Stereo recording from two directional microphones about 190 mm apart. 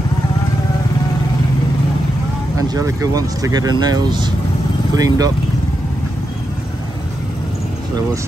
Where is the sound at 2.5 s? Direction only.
20° right (ahead or behind).